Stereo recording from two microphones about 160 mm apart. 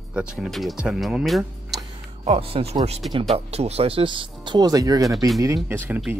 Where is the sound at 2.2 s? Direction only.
35° right (ahead or behind); by 5.3 s 20° right (ahead or behind).